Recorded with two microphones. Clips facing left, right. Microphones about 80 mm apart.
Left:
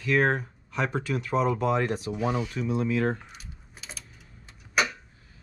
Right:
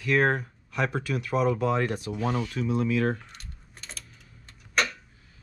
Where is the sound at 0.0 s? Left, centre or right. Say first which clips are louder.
Even; centre.